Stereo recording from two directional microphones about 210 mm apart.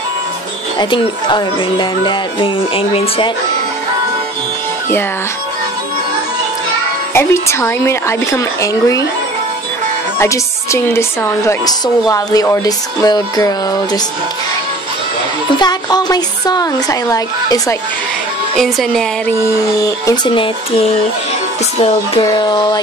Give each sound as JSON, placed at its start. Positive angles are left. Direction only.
{"t": 0.7, "sound": "speech", "side_deg": 20}
{"t": 7.2, "sound": "a woman's voice", "side_deg": 15}
{"t": 10.1, "sound": "a woman's voice", "side_deg": 15}
{"t": 15.6, "sound": "a woman's voice", "side_deg": 20}
{"t": 18.6, "sound": "speech", "side_deg": 0}
{"t": 19.5, "sound": "speech", "side_deg": 15}